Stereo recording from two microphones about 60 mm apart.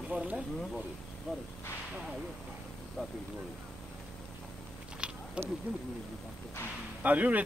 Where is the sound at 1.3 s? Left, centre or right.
Centre.